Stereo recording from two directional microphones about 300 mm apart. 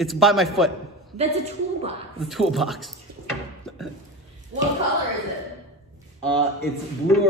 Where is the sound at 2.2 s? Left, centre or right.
Centre.